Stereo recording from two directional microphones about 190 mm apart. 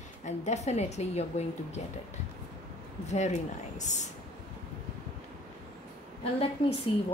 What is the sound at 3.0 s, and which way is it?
A woman's voice, 35° left (ahead or behind).